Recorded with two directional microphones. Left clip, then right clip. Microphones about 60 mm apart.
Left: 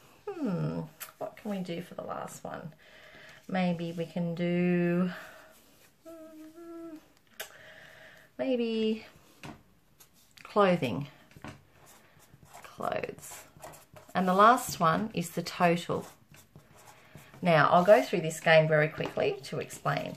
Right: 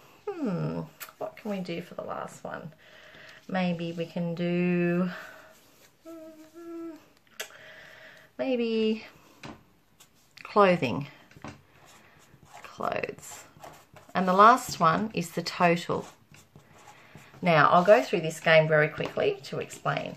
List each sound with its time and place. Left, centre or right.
0.2 s dog: right
1.3 s speech: right
2.4 s speech: centre
2.9 s a sound: centre
3.5 s speech: centre; by 5.3 s right
7.5 s a sound: right
10.3 s speech: right
12.6 s a sound: right
14.1 s speech: right
17.1 s writing: right
17.8 s speech: centre